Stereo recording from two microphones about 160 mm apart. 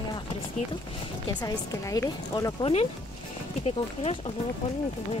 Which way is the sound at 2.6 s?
40° left (ahead or behind).